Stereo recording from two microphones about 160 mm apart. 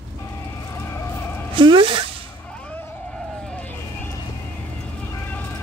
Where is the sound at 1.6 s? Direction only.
30° right (ahead or behind).